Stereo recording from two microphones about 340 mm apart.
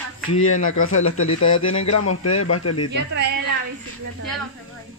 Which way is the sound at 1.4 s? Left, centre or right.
Left.